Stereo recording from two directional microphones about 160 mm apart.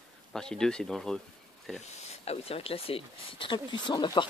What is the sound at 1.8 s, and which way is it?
Speech, 40° left (ahead or behind).